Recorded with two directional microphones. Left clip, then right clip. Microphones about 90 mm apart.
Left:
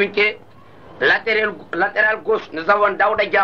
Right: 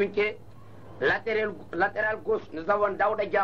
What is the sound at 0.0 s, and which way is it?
A man's voice, 25° right (ahead or behind).